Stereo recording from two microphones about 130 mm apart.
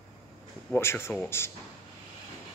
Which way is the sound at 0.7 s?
20° left (ahead or behind).